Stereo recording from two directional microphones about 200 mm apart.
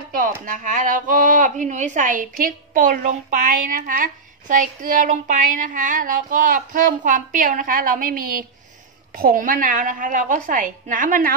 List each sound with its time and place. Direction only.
0.1 s a woman's voice: 45° right (ahead or behind)